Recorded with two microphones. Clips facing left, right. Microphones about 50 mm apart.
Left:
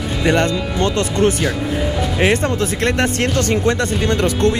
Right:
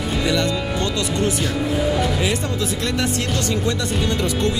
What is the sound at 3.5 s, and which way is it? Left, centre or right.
Speech, left.